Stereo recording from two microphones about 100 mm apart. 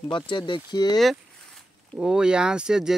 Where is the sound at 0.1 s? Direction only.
50° left (ahead or behind).